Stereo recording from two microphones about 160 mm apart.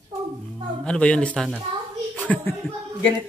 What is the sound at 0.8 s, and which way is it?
Speech, 5° left (ahead or behind).